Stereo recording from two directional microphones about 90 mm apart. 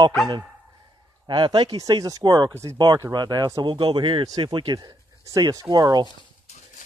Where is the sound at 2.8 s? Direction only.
50° right (ahead or behind).